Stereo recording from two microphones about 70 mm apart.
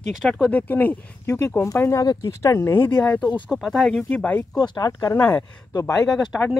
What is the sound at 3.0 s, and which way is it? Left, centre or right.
Speech, centre.